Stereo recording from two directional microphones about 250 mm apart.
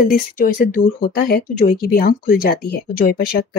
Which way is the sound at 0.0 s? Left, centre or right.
Left.